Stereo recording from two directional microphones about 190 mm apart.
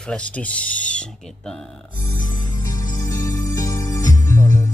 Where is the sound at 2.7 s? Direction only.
20° left (ahead or behind).